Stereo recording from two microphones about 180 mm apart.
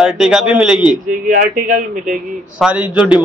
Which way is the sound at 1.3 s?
50° right (ahead or behind).